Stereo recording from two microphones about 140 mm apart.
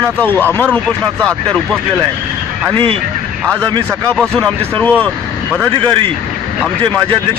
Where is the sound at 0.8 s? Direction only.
Centre (ahead or behind).